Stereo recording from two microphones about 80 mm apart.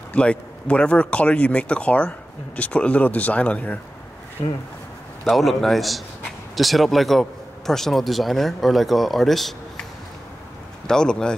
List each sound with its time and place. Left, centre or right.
0.1 s speech: centre
5.3 s speech: centre
10.9 s speech: centre